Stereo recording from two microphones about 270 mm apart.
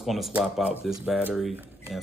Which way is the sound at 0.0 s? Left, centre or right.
Centre.